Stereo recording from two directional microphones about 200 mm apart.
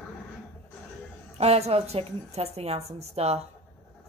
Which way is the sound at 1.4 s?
30° right (ahead or behind).